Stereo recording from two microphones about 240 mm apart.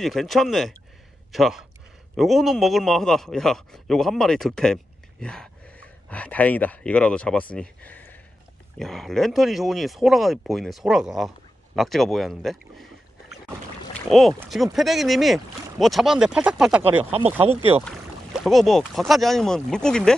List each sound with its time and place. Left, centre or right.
0.0 s speech: centre
13.9 s speech: centre
17.4 s speech: right
18.4 s speech: centre